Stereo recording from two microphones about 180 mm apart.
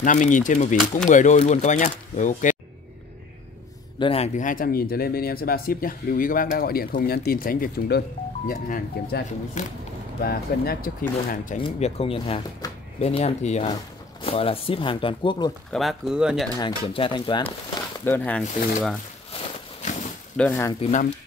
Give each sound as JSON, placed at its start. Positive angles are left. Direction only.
{"t": 0.0, "sound": "speech", "side_deg": 45}
{"t": 4.0, "sound": "speech", "side_deg": 35}
{"t": 11.6, "sound": "speech", "side_deg": 30}
{"t": 15.7, "sound": "speech", "side_deg": 0}
{"t": 16.5, "sound": "speech", "side_deg": 25}
{"t": 18.0, "sound": "speech", "side_deg": 10}
{"t": 20.3, "sound": "speech", "side_deg": 10}
{"t": 20.8, "sound": "speech", "side_deg": 45}